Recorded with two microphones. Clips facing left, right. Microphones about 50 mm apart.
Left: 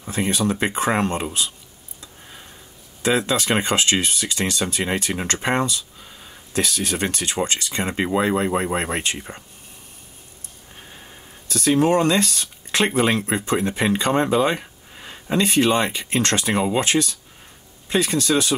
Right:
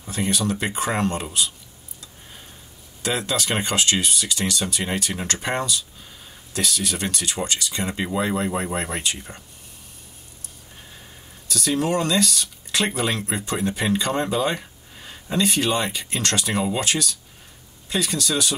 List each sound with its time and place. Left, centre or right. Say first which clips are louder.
0.0 s speech: left 2 dB; left
3.0 s speech: left 4 dB; left
11.4 s speech: left 5 dB; left